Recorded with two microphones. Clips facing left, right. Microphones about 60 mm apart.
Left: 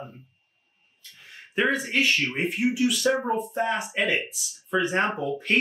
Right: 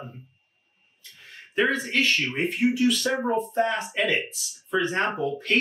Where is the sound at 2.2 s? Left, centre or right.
Centre.